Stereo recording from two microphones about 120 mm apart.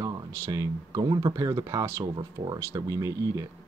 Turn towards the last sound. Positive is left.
turn(degrees=-30)  # may be behind; listen again after turning